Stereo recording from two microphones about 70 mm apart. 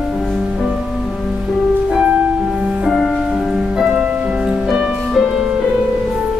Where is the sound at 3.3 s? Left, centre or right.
Centre.